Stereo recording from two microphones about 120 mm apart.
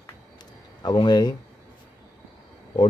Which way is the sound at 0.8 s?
40° left (ahead or behind).